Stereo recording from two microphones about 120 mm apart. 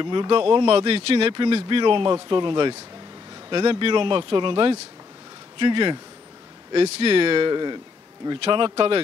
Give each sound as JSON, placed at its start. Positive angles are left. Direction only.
{"t": 0.0, "sound": "speech", "side_deg": -40}